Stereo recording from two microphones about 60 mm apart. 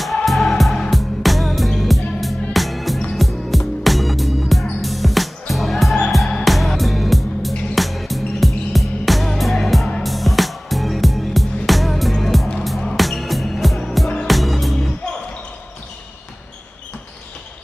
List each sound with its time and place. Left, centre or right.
0.0 s music: centre